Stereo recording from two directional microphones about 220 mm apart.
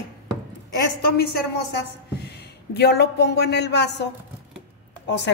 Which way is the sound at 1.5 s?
50° left (ahead or behind).